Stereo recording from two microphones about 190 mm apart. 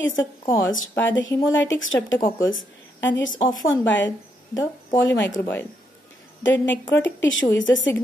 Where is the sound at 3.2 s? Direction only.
90° left.